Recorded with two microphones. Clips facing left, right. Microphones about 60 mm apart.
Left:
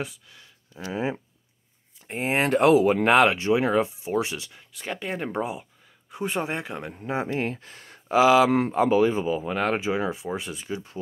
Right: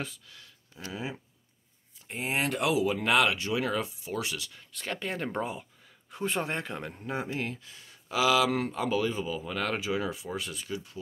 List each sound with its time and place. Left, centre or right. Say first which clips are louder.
0.0 s speech: left 5 dB; centre
0.7 s speech: left 9 dB; left
4.6 s speech: left 3 dB; centre
7.2 s speech: left 6 dB; left
8.1 s speech: left 7 dB; left